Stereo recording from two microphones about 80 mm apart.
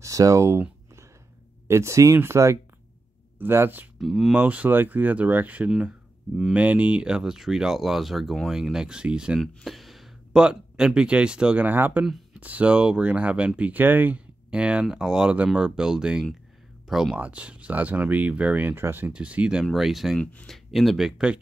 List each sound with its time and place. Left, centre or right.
0.0 s speech: right
4.0 s speech: centre
4.3 s speech: centre
9.4 s speech: centre
17.2 s speech: centre
19.1 s speech: centre
19.6 s speech: centre